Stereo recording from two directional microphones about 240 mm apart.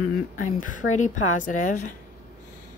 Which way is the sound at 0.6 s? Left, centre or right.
Left.